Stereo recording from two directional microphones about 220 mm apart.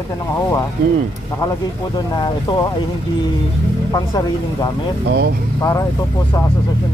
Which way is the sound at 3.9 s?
20° left (ahead or behind).